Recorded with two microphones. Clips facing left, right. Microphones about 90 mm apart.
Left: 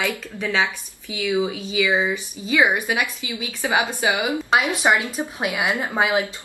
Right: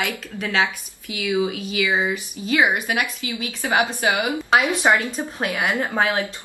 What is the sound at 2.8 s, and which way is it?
Speech, 15° left (ahead or behind).